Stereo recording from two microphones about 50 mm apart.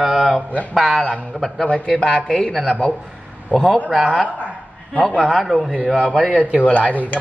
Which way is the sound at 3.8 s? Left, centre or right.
Right.